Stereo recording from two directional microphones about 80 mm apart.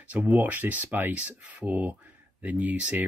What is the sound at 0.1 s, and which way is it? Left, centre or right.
Speech, centre.